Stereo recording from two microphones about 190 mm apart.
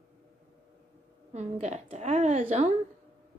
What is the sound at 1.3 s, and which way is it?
A woman's voice, 35° right (ahead or behind).